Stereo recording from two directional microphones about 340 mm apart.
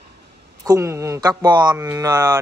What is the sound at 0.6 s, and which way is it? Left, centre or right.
Speech, centre.